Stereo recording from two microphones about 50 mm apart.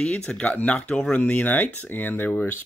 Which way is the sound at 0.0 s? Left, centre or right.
Left.